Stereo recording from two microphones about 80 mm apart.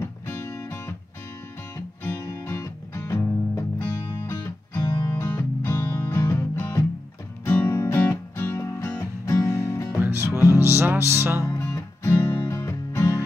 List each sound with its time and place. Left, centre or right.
0.3 s music: left
2.0 s music: left
9.9 s music: right
11.4 s music: left